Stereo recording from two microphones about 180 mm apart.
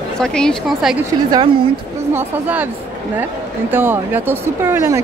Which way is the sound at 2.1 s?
10° right (ahead or behind).